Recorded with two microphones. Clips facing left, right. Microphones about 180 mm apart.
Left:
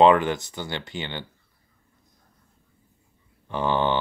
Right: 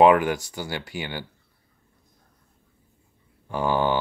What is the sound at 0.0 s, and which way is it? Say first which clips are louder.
Speech: even; 10° right (ahead or behind).